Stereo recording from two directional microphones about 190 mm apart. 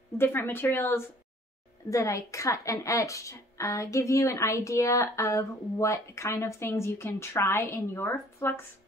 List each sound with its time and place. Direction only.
0.2 s a woman's voice: 10° left (ahead or behind)